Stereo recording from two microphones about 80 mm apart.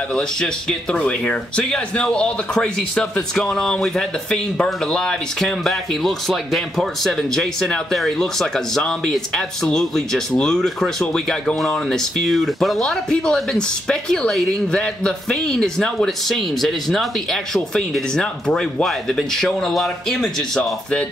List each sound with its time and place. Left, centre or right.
0.1 s speech: centre